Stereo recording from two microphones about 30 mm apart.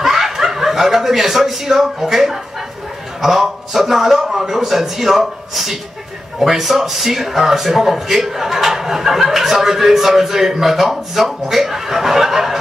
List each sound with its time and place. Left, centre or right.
0.0 s a man's voice: centre